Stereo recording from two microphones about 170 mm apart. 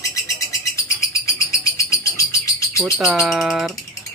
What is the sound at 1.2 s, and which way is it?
Bird, 20° left (ahead or behind).